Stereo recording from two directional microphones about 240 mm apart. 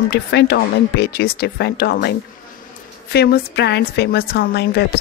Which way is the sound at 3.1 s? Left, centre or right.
Left.